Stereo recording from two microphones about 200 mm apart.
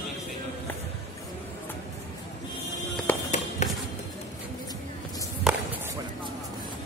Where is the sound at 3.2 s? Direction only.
35° left (ahead or behind).